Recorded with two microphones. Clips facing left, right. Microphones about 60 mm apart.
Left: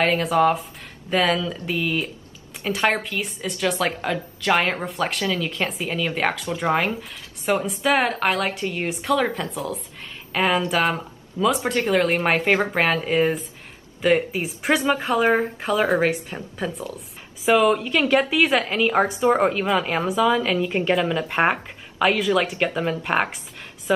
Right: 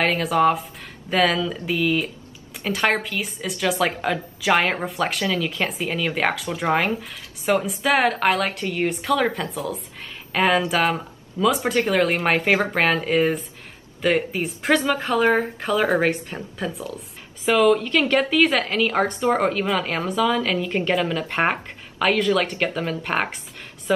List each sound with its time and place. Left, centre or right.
0.0 s a woman's voice: centre